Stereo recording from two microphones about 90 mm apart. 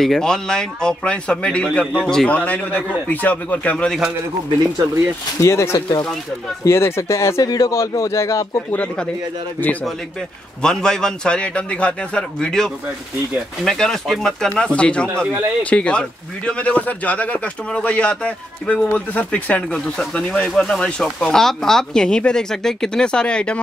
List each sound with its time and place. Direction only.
0.0 s speech: 5° left (ahead or behind)
5.4 s speech: 35° left (ahead or behind)
8.7 s speech: 10° left (ahead or behind)
10.6 s speech: 10° left (ahead or behind)